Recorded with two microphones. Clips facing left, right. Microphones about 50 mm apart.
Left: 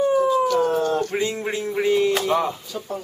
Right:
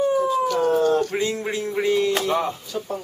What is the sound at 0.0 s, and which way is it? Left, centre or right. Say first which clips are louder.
Howl: left 2 dB; centre.